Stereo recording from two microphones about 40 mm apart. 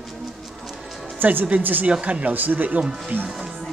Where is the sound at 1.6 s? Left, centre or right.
Right.